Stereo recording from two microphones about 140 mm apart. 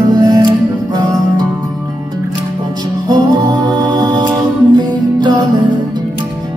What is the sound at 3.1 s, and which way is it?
Music, 30° right (ahead or behind).